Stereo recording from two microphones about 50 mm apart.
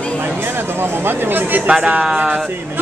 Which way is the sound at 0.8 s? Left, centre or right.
Right.